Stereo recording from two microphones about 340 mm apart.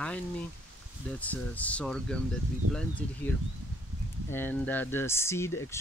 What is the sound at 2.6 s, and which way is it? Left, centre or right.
Speech, right.